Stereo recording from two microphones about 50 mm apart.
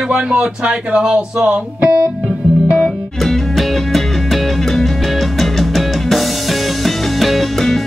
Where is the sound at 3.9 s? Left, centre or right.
Centre.